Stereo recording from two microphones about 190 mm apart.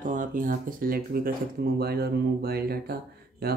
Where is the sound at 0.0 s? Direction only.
45° right (ahead or behind).